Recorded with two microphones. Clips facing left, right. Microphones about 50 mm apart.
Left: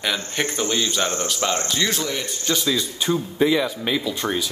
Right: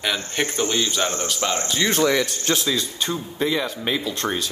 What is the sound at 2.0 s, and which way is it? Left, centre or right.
Speech, right.